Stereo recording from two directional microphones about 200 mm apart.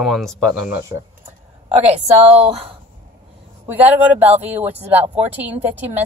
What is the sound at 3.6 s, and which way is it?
A woman's voice, 10° right (ahead or behind).